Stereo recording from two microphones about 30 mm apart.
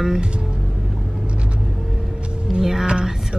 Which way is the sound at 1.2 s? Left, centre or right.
Right.